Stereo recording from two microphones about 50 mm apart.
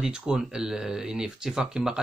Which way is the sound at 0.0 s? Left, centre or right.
Centre.